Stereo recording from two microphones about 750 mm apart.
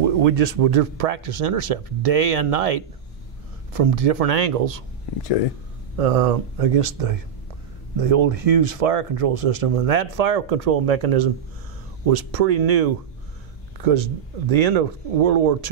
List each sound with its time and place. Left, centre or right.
0.0 s speech: right
5.9 s speech: right